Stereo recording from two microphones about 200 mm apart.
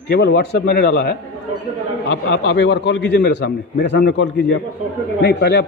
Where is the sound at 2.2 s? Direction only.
55° left (ahead or behind).